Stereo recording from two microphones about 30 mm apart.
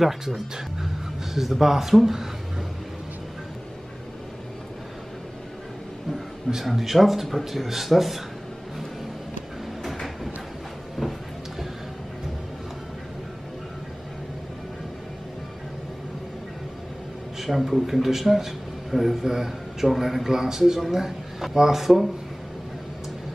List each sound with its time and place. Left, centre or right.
0.0 s speech: centre
1.3 s speech: centre
6.6 s speech: centre
11.0 s a sound: centre
17.5 s a man's voice: centre